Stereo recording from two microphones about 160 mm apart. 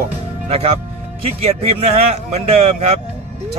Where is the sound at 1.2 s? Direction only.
40° right (ahead or behind).